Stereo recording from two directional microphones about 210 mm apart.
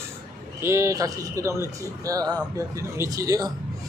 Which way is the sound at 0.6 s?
15° right (ahead or behind).